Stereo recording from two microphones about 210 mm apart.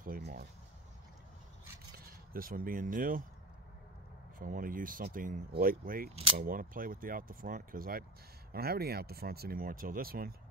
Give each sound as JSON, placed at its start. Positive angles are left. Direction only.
{"t": 0.0, "sound": "a sound", "side_deg": -45}
{"t": 2.3, "sound": "speech", "side_deg": -40}
{"t": 4.4, "sound": "speech", "side_deg": -40}